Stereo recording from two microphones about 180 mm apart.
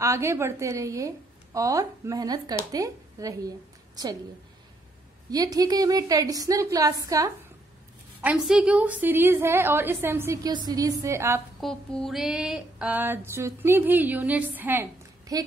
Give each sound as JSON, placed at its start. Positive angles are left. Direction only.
{"t": 0.0, "sound": "a woman's voice", "side_deg": -15}
{"t": 5.3, "sound": "a woman's voice", "side_deg": -20}
{"t": 8.2, "sound": "a woman's voice", "side_deg": -5}
{"t": 11.6, "sound": "a woman's voice", "side_deg": 0}